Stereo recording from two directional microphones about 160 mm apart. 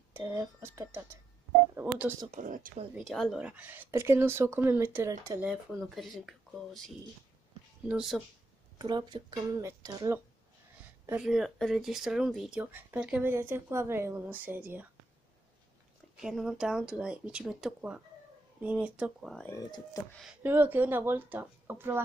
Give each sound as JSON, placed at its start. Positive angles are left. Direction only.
{"t": 0.1, "sound": "speech", "side_deg": -15}
{"t": 2.3, "sound": "speech", "side_deg": -55}
{"t": 3.0, "sound": "speech", "side_deg": 0}
{"t": 5.5, "sound": "speech", "side_deg": 0}
{"t": 7.9, "sound": "speech", "side_deg": 0}
{"t": 8.7, "sound": "speech", "side_deg": -30}
{"t": 11.1, "sound": "speech", "side_deg": -5}
{"t": 16.2, "sound": "speech", "side_deg": 0}
{"t": 20.4, "sound": "speech", "side_deg": -10}